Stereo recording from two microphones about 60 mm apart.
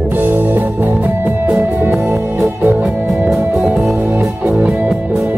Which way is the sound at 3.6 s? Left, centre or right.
Centre.